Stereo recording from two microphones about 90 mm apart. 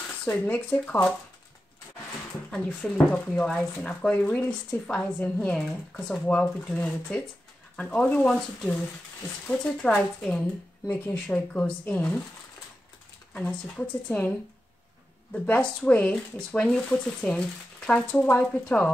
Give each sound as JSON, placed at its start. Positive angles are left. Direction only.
{"t": 0.2, "sound": "speech", "side_deg": 15}
{"t": 2.5, "sound": "speech", "side_deg": 10}
{"t": 9.8, "sound": "speech", "side_deg": 5}
{"t": 13.3, "sound": "speech", "side_deg": 10}
{"t": 15.3, "sound": "speech", "side_deg": 15}